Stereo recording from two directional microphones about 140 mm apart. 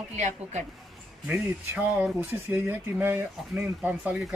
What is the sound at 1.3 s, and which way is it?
Speech, 10° right (ahead or behind).